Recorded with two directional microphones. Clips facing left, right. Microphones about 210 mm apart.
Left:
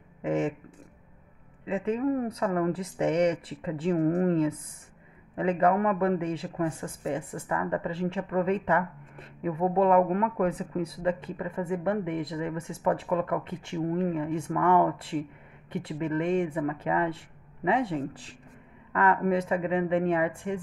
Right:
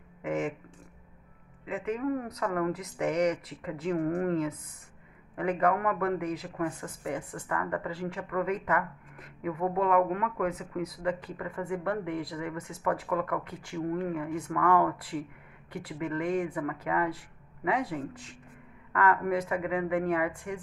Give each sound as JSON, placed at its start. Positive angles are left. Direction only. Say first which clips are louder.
{"t": 0.2, "sound": "speech", "louder": "left 4 dB", "side_deg": 30}
{"t": 1.7, "sound": "speech", "louder": "left 4 dB", "side_deg": 25}